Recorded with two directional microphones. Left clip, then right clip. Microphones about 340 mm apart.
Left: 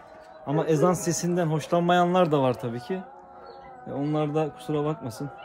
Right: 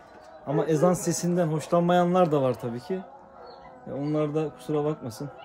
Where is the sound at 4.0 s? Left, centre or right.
Centre.